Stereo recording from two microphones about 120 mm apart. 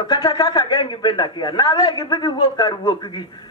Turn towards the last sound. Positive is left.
turn(degrees=35)  # may be behind; listen again after turning